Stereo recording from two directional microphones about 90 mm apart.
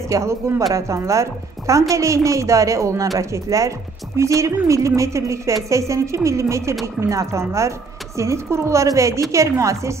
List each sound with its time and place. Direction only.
0.1 s a woman's voice: 35° right (ahead or behind)